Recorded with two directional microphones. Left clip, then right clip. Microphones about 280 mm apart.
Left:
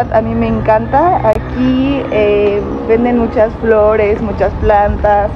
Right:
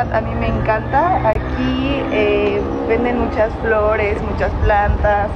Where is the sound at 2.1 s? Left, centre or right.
Left.